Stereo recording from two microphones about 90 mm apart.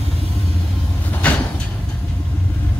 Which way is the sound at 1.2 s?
15° left (ahead or behind).